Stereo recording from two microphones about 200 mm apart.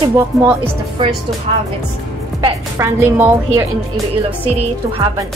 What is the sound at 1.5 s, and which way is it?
Speech, 30° right (ahead or behind).